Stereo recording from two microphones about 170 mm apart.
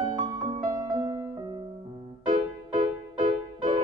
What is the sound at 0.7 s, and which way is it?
Music, 20° right (ahead or behind).